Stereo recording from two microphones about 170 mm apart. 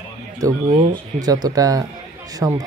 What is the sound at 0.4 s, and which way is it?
Speech, 20° right (ahead or behind).